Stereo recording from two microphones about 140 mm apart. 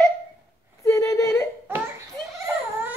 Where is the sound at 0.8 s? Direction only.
20° left (ahead or behind).